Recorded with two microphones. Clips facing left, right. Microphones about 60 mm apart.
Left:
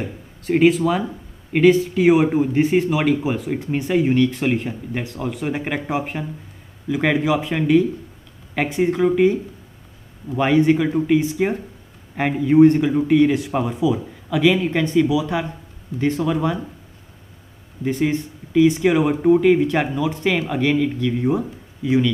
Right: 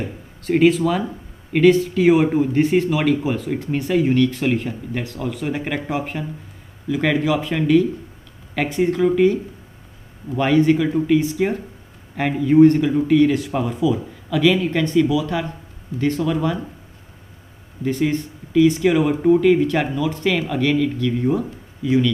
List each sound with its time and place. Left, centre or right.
0.4 s speech: centre
17.8 s speech: centre